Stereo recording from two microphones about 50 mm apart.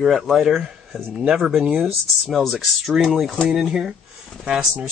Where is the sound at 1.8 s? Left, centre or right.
Centre.